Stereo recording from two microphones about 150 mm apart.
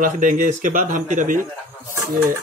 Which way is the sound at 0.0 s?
60° right (ahead or behind).